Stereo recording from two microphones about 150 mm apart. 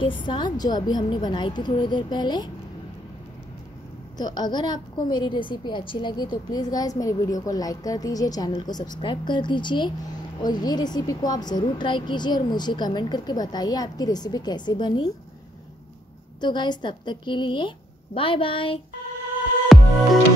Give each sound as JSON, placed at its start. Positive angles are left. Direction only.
{"t": 0.0, "sound": "a woman's voice", "side_deg": 35}
{"t": 4.2, "sound": "a woman's voice", "side_deg": 25}
{"t": 16.3, "sound": "a woman's voice", "side_deg": 30}
{"t": 19.7, "sound": "music", "side_deg": 0}